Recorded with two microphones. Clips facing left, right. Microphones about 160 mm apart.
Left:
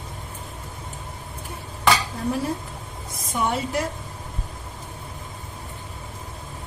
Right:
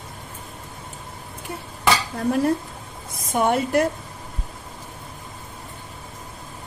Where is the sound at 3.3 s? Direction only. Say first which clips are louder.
Right 5 dB; 55° right (ahead or behind).